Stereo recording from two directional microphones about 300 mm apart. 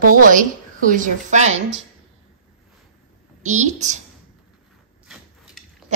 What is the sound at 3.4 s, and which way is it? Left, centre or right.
Speech, right.